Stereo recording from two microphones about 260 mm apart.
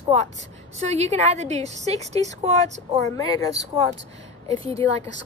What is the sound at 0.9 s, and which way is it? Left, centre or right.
A woman's voice, right.